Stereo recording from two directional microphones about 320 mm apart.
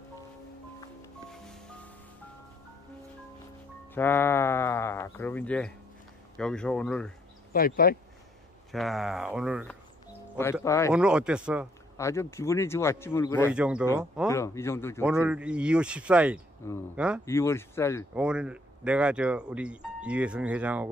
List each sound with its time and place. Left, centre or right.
1.3 s music: centre
3.9 s speech: centre
7.5 s speech: left
8.7 s speech: centre
10.6 s speech: centre
10.9 s speech: centre
12.0 s speech: centre
13.5 s speech: centre
14.3 s speech: centre
15.2 s speech: centre
17.2 s speech: centre
18.1 s speech: centre